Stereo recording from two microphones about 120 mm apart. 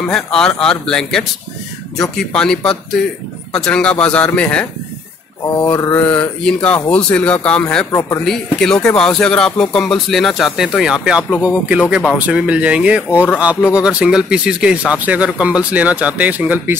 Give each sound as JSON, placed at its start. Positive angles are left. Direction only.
{"t": 0.1, "sound": "speech", "side_deg": 5}
{"t": 5.6, "sound": "mantra", "side_deg": 30}
{"t": 6.0, "sound": "speech", "side_deg": 10}
{"t": 7.9, "sound": "a man's voice", "side_deg": 25}
{"t": 8.3, "sound": "speech", "side_deg": 5}